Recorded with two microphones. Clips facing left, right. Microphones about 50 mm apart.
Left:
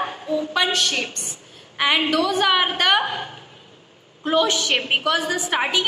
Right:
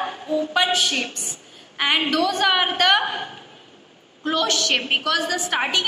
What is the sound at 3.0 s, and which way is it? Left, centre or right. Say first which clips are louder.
Speech: even; right.